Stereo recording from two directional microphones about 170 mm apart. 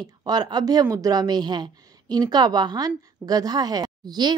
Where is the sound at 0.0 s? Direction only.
25° right (ahead or behind).